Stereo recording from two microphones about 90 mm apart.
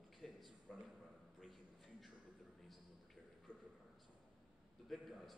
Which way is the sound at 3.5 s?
20° left (ahead or behind).